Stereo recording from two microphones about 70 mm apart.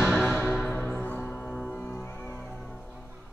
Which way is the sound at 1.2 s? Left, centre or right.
Centre.